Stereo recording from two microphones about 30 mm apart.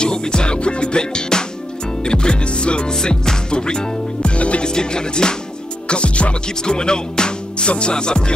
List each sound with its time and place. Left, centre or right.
0.0 s music: left
2.9 s music: left
4.4 s music: left
4.6 s music: left
5.9 s music: left
6.6 s speech: left
7.9 s music: left